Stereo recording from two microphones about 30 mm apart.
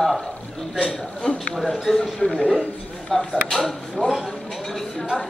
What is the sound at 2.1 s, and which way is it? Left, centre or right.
A man's voice, centre.